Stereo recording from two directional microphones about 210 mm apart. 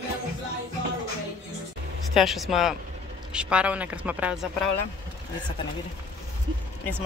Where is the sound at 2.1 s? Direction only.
Centre (ahead or behind).